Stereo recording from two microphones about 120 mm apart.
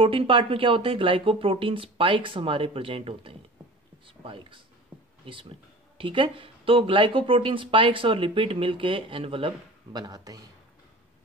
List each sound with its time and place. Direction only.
0.0 s speech: 45° right (ahead or behind)
9.9 s speech: 35° right (ahead or behind)